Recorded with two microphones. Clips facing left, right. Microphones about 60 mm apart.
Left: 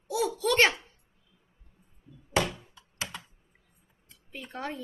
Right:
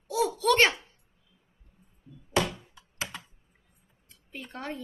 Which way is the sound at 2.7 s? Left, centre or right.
Centre.